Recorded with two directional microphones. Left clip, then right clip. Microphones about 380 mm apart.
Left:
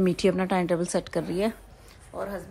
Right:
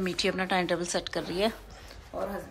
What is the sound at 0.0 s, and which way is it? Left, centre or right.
Speech, centre.